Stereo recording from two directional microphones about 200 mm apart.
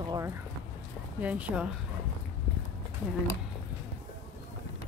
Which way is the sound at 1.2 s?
5° right (ahead or behind).